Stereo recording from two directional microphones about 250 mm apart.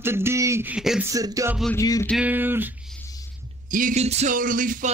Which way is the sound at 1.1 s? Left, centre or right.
Centre.